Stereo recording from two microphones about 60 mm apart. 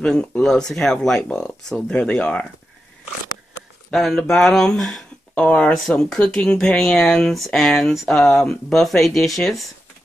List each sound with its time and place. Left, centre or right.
0.0 s speech: centre
3.9 s speech: centre
5.3 s speech: centre
5.7 s speech: centre